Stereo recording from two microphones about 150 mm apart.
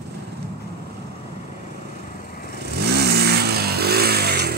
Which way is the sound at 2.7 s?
90° right.